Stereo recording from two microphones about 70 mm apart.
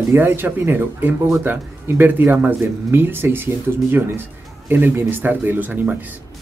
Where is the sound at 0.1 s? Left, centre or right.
Right.